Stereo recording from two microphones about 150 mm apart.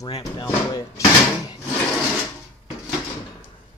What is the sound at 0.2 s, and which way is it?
Speech, 25° left (ahead or behind).